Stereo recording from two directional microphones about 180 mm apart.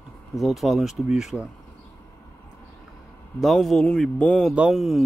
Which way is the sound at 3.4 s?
Centre (ahead or behind).